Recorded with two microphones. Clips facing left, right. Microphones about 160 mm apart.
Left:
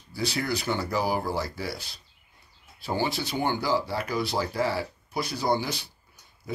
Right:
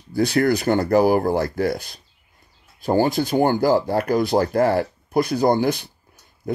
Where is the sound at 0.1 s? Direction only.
50° right (ahead or behind).